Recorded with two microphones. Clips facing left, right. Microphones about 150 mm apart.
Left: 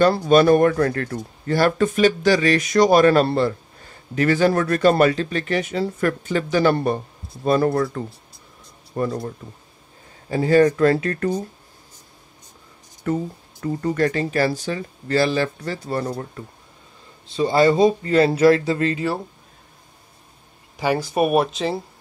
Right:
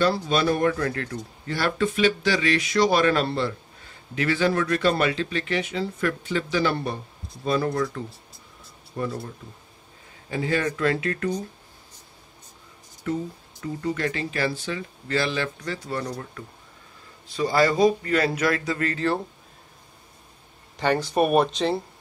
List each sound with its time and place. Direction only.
0.0 s speech: 50° left (ahead or behind)
10.3 s speech: 40° left (ahead or behind)
13.0 s a man's voice: 45° left (ahead or behind); by 18.9 s 25° left (ahead or behind)
18.9 s speech: 5° left (ahead or behind)
20.7 s speech: 10° left (ahead or behind)